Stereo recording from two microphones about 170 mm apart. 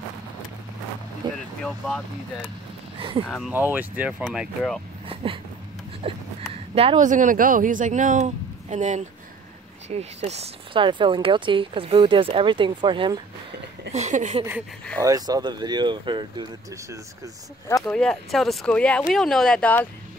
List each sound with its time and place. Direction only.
1.2 s speech: 25° right (ahead or behind)
1.6 s speech: centre (ahead or behind)
3.0 s speech: 30° right (ahead or behind)
3.3 s speech: centre (ahead or behind)
3.5 s speech: 10° right (ahead or behind)
5.0 s a sound: 30° right (ahead or behind)
6.7 s speech: 35° right (ahead or behind)
7.1 s a man's voice: 50° right (ahead or behind); by 13.2 s 30° right (ahead or behind)
13.9 s a man's voice: 45° right (ahead or behind)
15.0 s speech: 20° right (ahead or behind)
17.6 s speech: 15° left (ahead or behind)
17.9 s speech: 5° left (ahead or behind)